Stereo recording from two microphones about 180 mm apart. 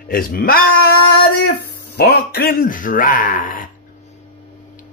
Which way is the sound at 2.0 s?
65° left (ahead or behind).